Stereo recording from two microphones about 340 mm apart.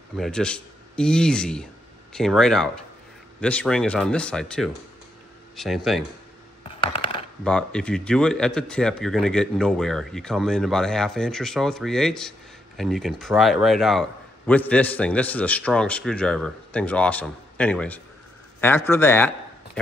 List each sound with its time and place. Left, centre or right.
0.1 s speech: centre
6.6 s coin: centre
7.4 s a man's voice: centre